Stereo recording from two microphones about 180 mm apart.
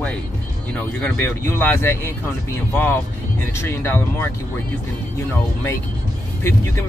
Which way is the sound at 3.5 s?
15° left (ahead or behind).